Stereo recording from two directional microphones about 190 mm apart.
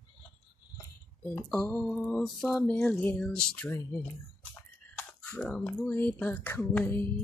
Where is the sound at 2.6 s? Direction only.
10° left (ahead or behind).